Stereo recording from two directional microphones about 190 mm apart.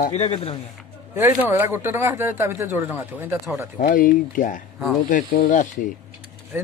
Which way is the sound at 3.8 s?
45° left (ahead or behind).